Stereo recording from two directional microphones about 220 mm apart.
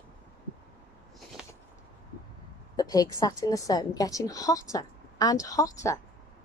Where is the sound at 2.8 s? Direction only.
15° left (ahead or behind).